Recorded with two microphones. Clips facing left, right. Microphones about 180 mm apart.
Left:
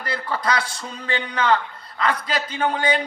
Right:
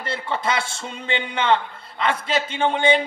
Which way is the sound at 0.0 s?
25° right (ahead or behind).